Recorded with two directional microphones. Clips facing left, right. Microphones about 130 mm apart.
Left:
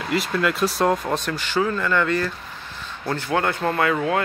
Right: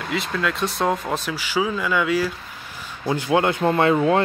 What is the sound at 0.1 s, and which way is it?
Speech, centre (ahead or behind).